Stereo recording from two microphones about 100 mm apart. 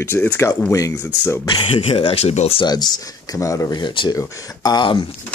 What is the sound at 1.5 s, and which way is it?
Speech, 60° left (ahead or behind).